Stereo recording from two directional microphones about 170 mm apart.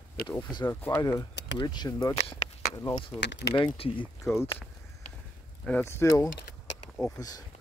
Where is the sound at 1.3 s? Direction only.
90° left.